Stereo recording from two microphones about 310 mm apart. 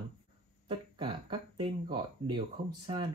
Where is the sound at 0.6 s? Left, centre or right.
Centre.